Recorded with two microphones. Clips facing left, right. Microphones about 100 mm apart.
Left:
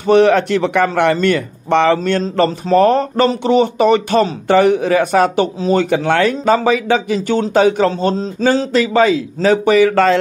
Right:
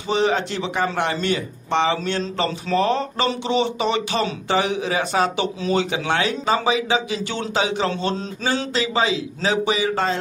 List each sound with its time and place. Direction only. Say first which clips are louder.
0.0 s speech: left 10 dB; 60° left (ahead or behind)